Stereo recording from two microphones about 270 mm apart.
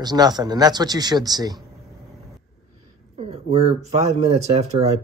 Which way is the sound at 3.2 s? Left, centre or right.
Right.